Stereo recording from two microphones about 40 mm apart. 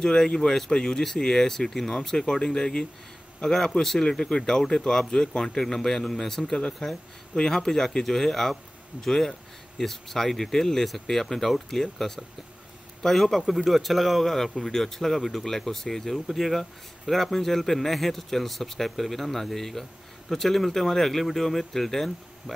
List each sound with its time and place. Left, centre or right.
0.0 s a man's voice: centre